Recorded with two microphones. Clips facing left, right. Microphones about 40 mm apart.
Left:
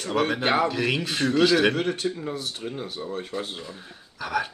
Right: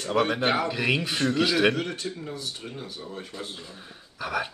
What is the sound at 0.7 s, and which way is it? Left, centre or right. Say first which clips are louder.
Speech: left 1 dB; centre.